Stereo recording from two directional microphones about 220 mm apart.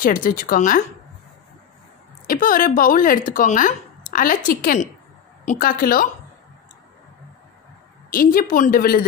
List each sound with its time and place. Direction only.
0.0 s speech: 40° left (ahead or behind)
2.2 s speech: 40° left (ahead or behind)
8.1 s speech: 40° left (ahead or behind)